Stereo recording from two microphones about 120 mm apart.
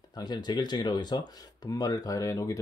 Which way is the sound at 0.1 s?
35° left (ahead or behind).